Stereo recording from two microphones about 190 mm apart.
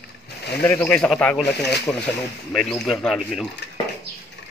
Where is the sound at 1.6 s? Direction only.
60° left (ahead or behind).